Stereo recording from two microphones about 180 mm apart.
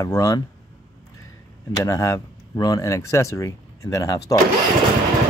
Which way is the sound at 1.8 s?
15° left (ahead or behind).